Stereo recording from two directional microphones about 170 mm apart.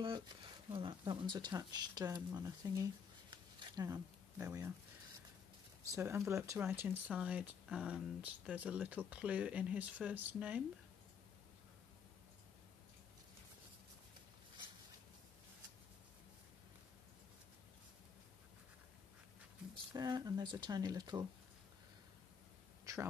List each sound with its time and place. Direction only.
0.7 s speech: 30° right (ahead or behind)
5.9 s speech: 15° right (ahead or behind)
19.9 s speech: 25° right (ahead or behind)
22.9 s a sound: 20° right (ahead or behind)